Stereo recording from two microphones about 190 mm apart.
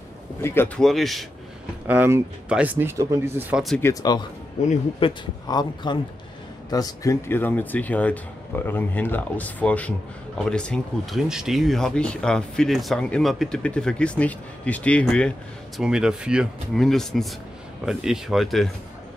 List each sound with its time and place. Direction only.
0.4 s a man's voice: 10° left (ahead or behind)
1.9 s speech: 10° right (ahead or behind)
3.8 s speech: 20° left (ahead or behind)
5.0 s a man's voice: 30° left (ahead or behind); by 18.7 s centre (ahead or behind)